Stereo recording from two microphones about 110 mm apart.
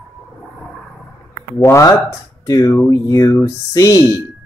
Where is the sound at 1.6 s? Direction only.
25° left (ahead or behind).